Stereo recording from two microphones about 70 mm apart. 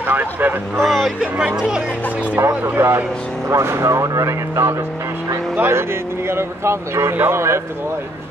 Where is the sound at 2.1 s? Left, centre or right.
Right.